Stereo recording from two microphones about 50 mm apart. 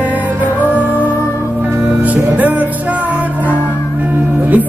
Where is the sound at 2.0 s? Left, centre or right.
Right.